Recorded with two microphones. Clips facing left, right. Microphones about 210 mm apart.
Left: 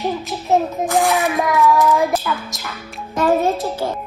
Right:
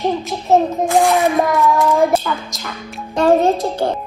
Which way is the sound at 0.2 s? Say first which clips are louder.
Right 3 dB; centre (ahead or behind).